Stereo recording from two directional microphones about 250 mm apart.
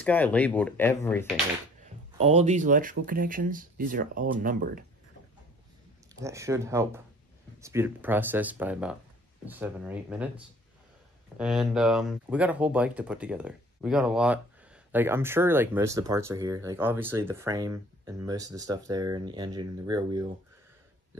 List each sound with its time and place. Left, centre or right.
0.0 s speech: centre
2.1 s speech: right
6.1 s speech: centre